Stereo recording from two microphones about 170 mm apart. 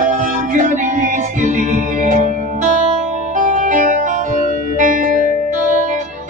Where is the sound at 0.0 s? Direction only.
45° right (ahead or behind).